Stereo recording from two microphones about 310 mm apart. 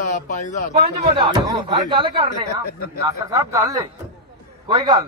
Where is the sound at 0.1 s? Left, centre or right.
Left.